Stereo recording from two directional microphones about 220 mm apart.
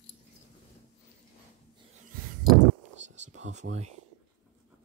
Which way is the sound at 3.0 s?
30° right (ahead or behind).